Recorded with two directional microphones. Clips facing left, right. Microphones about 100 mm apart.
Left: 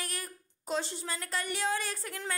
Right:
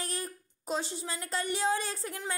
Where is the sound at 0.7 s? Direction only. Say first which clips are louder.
Even; 15° right (ahead or behind).